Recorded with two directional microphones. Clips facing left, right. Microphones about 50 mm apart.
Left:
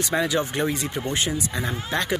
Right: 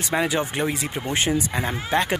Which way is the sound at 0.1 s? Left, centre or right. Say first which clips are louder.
Right 2 dB; centre.